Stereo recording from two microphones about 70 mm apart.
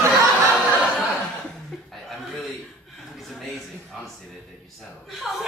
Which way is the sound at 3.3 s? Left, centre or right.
Centre.